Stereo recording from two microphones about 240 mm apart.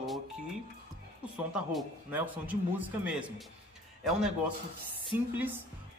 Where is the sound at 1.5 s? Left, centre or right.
Centre.